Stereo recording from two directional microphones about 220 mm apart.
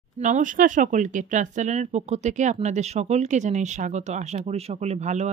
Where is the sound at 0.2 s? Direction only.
35° right (ahead or behind).